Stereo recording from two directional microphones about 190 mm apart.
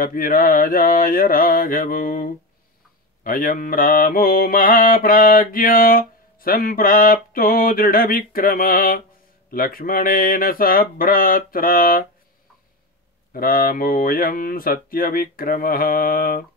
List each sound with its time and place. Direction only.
0.0 s mantra: 50° left (ahead or behind)
13.3 s mantra: 50° left (ahead or behind)